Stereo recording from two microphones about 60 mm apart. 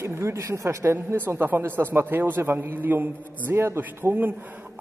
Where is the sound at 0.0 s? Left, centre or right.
Right.